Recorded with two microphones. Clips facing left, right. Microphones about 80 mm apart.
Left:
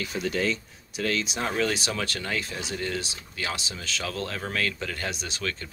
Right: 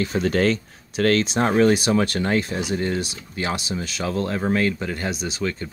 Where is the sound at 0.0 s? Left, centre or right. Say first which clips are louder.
Right 7 dB; right.